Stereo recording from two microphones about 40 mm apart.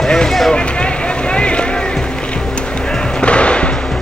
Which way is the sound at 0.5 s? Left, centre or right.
Left.